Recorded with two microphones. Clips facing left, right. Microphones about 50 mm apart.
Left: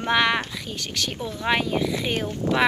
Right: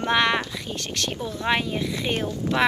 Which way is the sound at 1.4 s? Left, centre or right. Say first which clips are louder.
Left 2 dB; centre.